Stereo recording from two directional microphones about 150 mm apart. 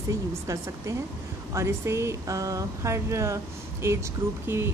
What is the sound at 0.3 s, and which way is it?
Speech, 20° right (ahead or behind).